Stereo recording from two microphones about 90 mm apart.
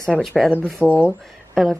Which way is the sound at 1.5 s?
Centre (ahead or behind).